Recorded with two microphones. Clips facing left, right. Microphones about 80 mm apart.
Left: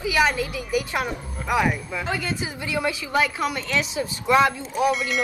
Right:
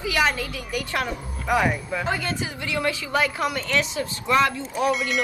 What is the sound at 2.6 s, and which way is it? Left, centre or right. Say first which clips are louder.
Speech: even; centre.